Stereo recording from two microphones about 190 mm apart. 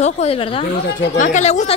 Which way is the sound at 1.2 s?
40° left (ahead or behind).